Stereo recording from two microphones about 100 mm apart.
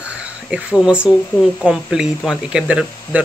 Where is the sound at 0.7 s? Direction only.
10° right (ahead or behind).